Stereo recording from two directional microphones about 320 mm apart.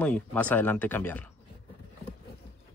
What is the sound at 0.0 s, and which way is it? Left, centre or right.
Speech, centre.